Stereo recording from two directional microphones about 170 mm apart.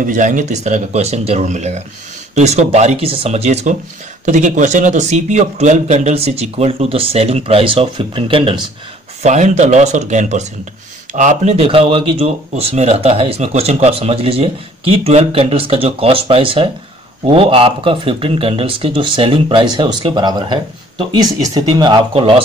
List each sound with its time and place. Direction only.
0.0 s speech: 50° right (ahead or behind); by 8.5 s 30° right (ahead or behind)
9.2 s speech: 45° right (ahead or behind)